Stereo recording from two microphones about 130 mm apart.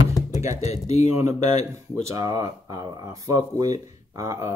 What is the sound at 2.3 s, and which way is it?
Speech, 30° right (ahead or behind).